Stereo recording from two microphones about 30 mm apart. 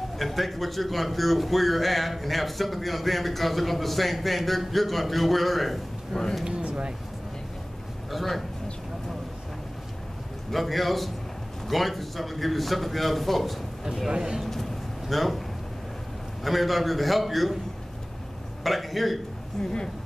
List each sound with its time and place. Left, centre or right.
0.2 s a man's voice: centre
6.1 s speech: centre
8.1 s a man's voice: centre
10.5 s a man's voice: centre
14.1 s speech: right
14.4 s a sound: centre
16.4 s a man's voice: centre
18.6 s a man's voice: centre
19.6 s speech: left